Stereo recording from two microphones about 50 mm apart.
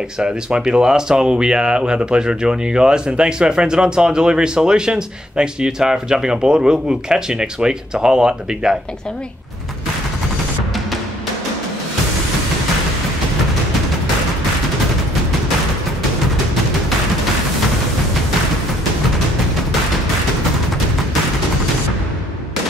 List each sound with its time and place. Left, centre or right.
0.2 s speech: centre